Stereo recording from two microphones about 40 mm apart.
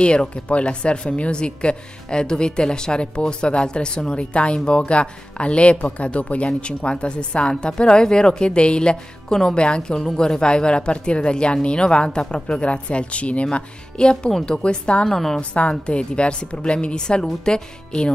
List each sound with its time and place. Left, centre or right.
0.0 s speech: left
15.0 s a woman's voice: centre
15.7 s speech: left